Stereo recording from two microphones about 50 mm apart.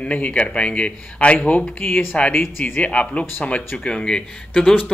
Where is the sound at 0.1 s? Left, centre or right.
Left.